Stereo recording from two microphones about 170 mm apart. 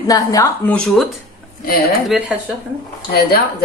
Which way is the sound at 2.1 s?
5° right (ahead or behind).